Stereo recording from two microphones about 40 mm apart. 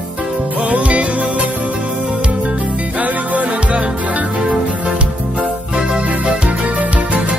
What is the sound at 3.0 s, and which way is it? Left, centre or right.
Music, right.